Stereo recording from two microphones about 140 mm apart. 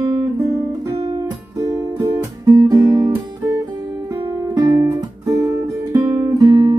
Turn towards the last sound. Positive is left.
turn(degrees=-30)  # may be behind; listen again after turning